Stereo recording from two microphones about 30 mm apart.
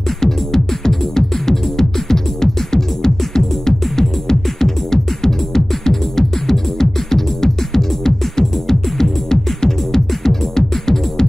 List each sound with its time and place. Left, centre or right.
0.2 s music: centre